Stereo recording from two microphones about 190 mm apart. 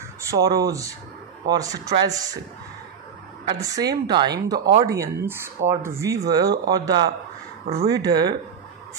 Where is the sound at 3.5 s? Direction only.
20° right (ahead or behind).